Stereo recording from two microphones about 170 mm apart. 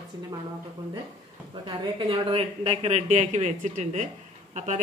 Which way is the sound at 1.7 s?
30° right (ahead or behind).